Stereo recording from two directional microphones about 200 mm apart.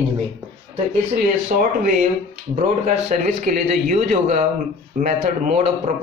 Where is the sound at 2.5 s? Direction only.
35° right (ahead or behind).